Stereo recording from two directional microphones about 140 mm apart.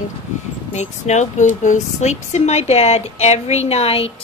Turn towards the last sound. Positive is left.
turn(degrees=45)  # may be behind; listen again after turning